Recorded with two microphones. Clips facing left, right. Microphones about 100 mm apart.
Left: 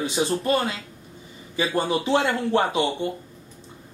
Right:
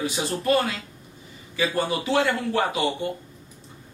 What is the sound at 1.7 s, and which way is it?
A man's voice, 25° left (ahead or behind).